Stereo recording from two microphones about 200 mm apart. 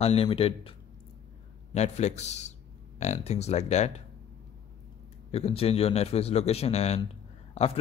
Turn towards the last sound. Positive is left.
turn(degrees=30)  # may be behind; listen again after turning